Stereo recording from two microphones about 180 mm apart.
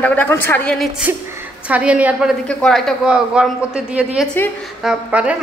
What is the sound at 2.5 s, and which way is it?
A man's voice, 5° left (ahead or behind).